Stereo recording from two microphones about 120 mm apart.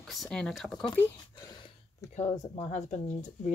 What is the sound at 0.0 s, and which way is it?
Speech, centre (ahead or behind).